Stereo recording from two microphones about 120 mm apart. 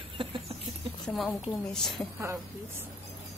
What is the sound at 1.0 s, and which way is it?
A woman's voice, centre (ahead or behind).